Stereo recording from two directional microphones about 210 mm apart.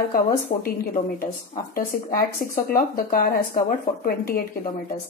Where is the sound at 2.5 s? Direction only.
45° left (ahead or behind).